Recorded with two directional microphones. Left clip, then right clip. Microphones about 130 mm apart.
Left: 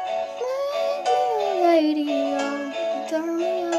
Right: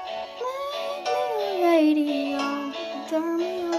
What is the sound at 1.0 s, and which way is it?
Music, 20° left (ahead or behind).